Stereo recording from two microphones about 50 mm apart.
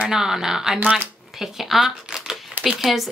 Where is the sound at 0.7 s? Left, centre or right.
Right.